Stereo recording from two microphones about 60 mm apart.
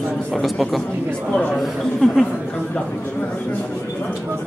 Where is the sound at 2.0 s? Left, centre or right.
Centre.